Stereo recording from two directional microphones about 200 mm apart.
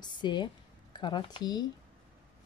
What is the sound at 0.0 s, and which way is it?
Speech, 20° left (ahead or behind).